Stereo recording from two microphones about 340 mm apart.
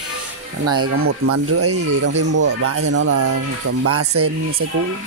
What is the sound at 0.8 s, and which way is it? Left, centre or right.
Speech, right.